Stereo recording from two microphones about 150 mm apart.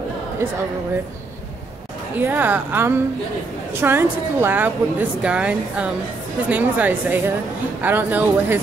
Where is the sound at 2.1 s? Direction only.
10° right (ahead or behind).